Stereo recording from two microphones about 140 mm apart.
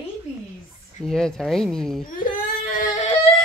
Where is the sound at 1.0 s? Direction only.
5° left (ahead or behind).